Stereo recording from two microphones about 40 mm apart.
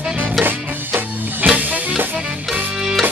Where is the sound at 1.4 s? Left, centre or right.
Right.